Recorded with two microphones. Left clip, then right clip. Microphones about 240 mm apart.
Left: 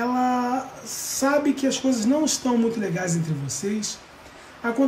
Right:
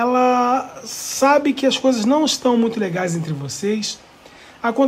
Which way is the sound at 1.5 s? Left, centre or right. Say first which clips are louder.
Right 6 dB; right.